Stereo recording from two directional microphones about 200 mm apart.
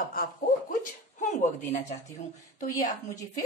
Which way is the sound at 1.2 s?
35° left (ahead or behind).